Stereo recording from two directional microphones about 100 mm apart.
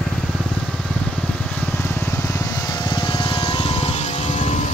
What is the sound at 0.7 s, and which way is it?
Vehicle, 5° left (ahead or behind).